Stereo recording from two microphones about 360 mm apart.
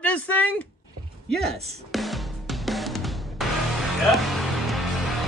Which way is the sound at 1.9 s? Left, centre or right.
Centre.